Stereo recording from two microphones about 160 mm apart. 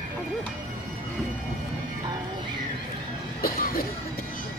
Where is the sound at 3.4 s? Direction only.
65° left (ahead or behind).